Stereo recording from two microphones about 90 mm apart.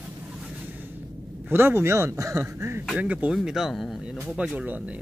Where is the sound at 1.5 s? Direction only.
25° right (ahead or behind).